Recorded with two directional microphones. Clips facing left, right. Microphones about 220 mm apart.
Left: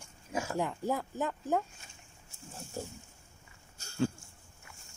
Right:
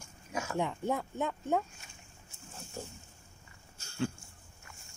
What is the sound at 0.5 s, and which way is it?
Speech, centre (ahead or behind).